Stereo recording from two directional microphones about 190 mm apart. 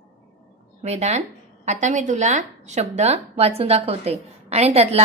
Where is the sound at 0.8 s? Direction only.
35° right (ahead or behind).